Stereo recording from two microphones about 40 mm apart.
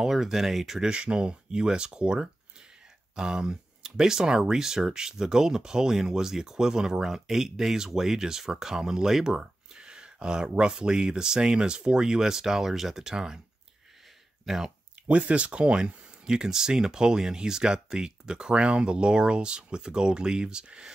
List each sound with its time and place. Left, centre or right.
0.0 s speech: centre
0.7 s speech: right
9.8 s speech: right
14.4 s speech: centre
15.0 s speech: right